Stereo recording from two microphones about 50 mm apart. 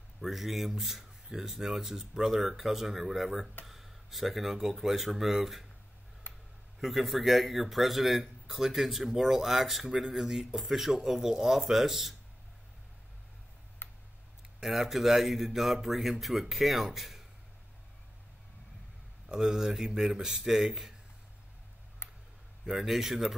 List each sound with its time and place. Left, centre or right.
0.2 s a man's voice: centre
6.8 s a man's voice: centre
13.8 s tick: left
14.6 s a man's voice: centre
19.2 s speech: centre
22.7 s speech: centre